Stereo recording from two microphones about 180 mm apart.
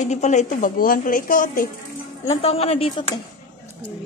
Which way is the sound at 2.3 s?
35° left (ahead or behind).